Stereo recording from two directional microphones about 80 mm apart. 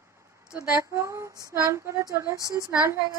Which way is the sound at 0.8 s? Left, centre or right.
Right.